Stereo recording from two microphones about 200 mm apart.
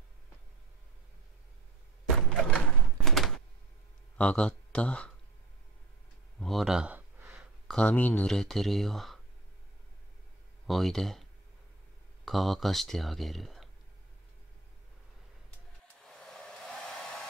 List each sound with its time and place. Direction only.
2.0 s a sound: centre (ahead or behind)
4.2 s speech: 5° left (ahead or behind)
6.4 s speech: centre (ahead or behind)
7.6 s speech: 5° left (ahead or behind)
10.7 s speech: centre (ahead or behind)
12.3 s speech: centre (ahead or behind)
16.0 s hair dryer: centre (ahead or behind)